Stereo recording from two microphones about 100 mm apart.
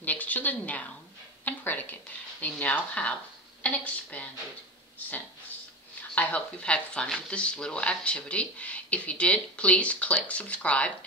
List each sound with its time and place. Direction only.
0.0 s a woman's voice: 15° left (ahead or behind)
6.1 s speech: 10° left (ahead or behind)